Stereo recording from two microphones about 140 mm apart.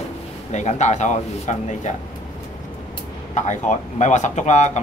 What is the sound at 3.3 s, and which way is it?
Speech, 60° left (ahead or behind).